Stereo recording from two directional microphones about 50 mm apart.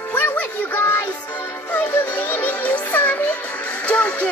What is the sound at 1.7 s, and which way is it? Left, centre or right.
Music, left.